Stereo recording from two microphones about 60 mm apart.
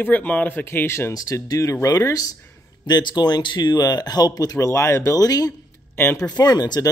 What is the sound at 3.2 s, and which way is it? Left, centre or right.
Speech, left.